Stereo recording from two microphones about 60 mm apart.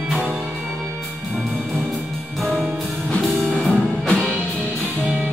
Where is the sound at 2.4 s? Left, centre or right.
Centre.